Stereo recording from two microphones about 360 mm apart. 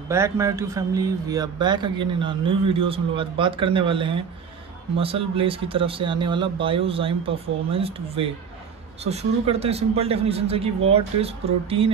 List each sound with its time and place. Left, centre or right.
0.1 s a man's voice: centre